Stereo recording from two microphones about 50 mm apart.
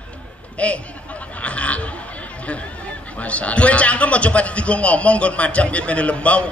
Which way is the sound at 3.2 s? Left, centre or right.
Left.